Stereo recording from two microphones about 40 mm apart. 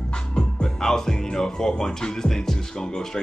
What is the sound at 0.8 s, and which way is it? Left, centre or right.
Speech, centre.